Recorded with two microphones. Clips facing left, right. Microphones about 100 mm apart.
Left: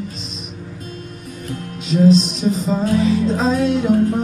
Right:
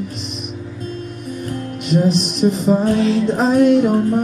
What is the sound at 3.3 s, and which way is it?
Music, 55° right (ahead or behind).